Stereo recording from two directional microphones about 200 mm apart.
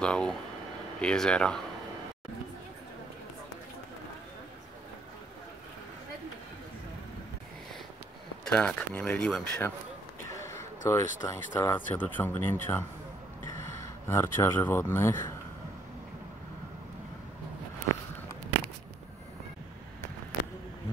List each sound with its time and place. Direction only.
0.0 s speech: 5° left (ahead or behind)
8.5 s speech: 5° left (ahead or behind)
10.4 s a sound: 15° left (ahead or behind)
11.2 s speech: 10° left (ahead or behind)